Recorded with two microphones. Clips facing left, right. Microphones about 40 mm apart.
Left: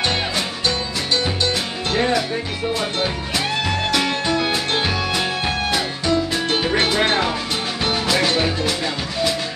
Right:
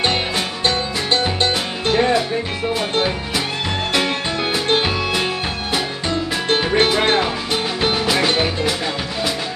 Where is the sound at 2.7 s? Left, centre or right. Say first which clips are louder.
Right 3 dB; centre.